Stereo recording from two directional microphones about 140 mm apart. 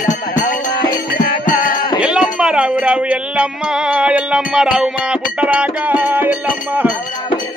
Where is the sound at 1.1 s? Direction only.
75° left (ahead or behind).